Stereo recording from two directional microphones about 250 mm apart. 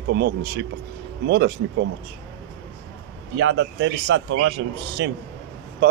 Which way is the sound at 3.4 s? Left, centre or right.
Right.